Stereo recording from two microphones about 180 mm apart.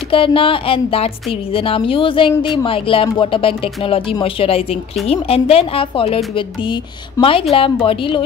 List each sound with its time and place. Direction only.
0.1 s a woman's voice: 30° left (ahead or behind)